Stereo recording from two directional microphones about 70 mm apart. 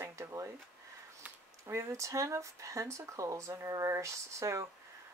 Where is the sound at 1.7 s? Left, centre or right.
Right.